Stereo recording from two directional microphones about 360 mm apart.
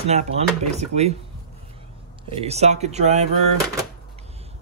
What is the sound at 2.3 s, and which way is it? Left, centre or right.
Speech, centre.